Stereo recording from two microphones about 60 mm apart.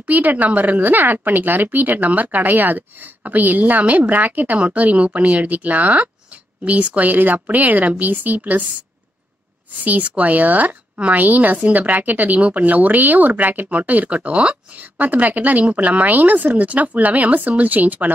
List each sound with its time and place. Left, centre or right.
0.0 s a woman's voice: right
9.8 s a woman's voice: right